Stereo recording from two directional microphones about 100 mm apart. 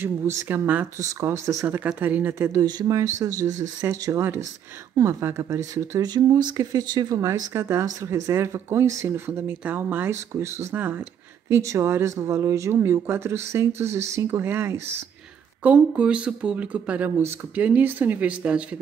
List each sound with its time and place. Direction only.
0.0 s speech: 20° right (ahead or behind)
1.7 s speech: 15° right (ahead or behind)
2.6 s speech: 40° right (ahead or behind)
7.2 s speech: 25° right (ahead or behind)
15.6 s speech: 15° right (ahead or behind)